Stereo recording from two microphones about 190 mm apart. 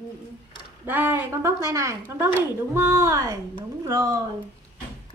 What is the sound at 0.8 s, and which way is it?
Speech, 10° right (ahead or behind).